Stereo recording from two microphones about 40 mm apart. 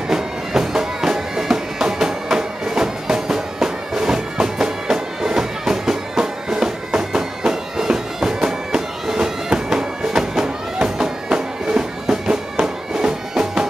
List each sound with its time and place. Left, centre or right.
0.1 s music: centre